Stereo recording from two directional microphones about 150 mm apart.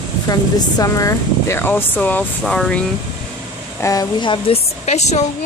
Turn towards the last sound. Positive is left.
turn(degrees=50)  # may be behind; listen again after turning